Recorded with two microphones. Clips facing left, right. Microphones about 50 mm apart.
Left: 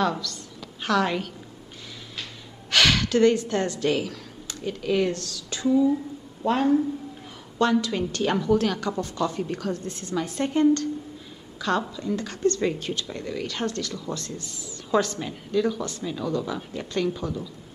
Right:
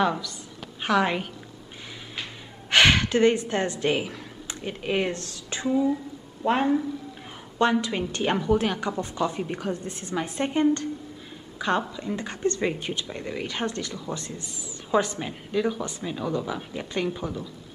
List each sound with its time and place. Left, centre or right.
0.0 s a woman's voice: centre
2.7 s speech: right
11.5 s a sound: right
11.8 s speech: right